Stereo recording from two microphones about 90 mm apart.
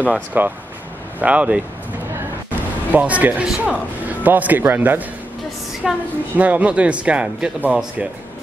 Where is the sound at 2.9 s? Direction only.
15° right (ahead or behind).